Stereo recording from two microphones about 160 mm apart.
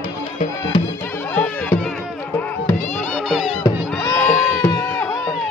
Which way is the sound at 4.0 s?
20° left (ahead or behind).